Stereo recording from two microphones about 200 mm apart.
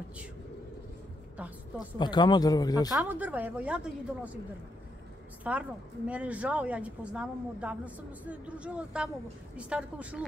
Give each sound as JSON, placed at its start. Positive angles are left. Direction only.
{"t": 2.0, "sound": "speech", "side_deg": 20}
{"t": 2.9, "sound": "speech", "side_deg": -10}
{"t": 5.4, "sound": "speech", "side_deg": -5}